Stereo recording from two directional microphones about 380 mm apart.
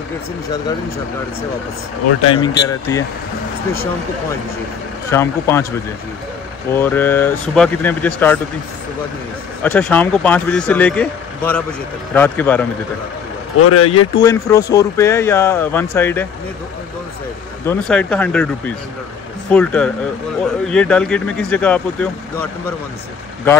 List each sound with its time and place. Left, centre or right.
2.3 s speech: centre
5.1 s speech: centre
6.7 s speech: centre
9.6 s speech: centre
13.6 s speech: left
14.2 s speech: centre
17.6 s speech: centre
19.5 s speech: centre